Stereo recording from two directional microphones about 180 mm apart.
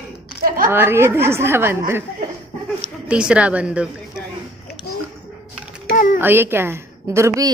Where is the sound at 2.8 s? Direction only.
5° right (ahead or behind).